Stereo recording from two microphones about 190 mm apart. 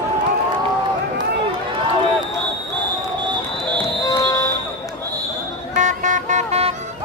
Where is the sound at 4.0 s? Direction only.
20° left (ahead or behind).